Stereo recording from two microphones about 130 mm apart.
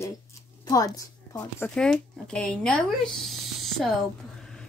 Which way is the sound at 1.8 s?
5° left (ahead or behind).